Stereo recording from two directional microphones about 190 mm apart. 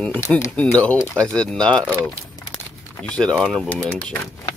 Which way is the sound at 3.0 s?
5° left (ahead or behind).